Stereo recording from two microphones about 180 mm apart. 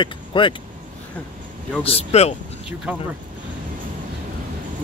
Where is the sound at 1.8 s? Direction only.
35° left (ahead or behind).